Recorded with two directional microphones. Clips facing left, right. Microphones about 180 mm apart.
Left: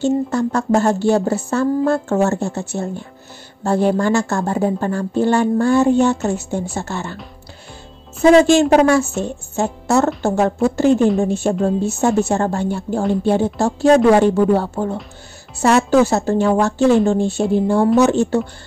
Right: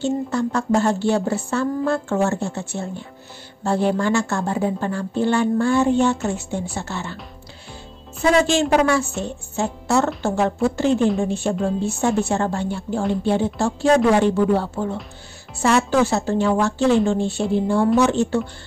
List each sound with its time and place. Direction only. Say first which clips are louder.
0.0 s a woman's voice: left 4 dB; 45° left (ahead or behind)
8.2 s a woman's voice: left 7 dB; 45° left (ahead or behind)